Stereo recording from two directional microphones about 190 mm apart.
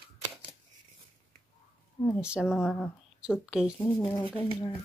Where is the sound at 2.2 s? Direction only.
5° right (ahead or behind).